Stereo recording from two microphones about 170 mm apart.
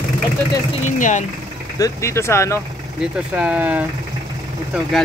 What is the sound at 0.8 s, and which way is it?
Speech, 45° left (ahead or behind).